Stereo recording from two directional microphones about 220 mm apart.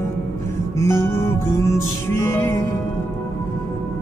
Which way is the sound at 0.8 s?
10° left (ahead or behind).